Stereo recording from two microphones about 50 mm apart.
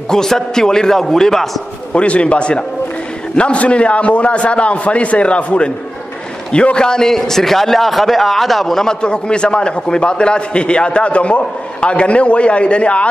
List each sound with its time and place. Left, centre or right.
0.1 s a man's voice: centre
2.0 s a man's voice: left; by 8.8 s centre
8.8 s a man's voice: centre